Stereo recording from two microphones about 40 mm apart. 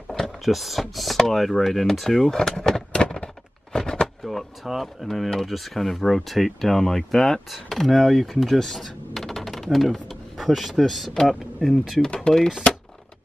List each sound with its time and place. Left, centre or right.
0.5 s speech: centre
2.3 s a sound: centre
3.7 s power windows: centre
4.2 s door: centre
5.0 s speech: centre
7.5 s speech: centre
8.7 s a sound: centre
10.0 s speech: centre
12.3 s speech: left